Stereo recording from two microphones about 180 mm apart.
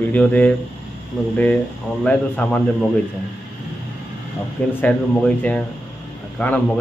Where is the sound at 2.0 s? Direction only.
10° left (ahead or behind).